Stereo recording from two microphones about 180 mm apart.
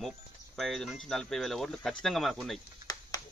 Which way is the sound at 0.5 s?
Centre (ahead or behind).